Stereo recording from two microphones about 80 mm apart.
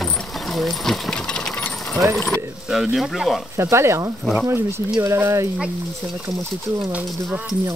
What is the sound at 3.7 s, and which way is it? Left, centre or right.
Speech, right.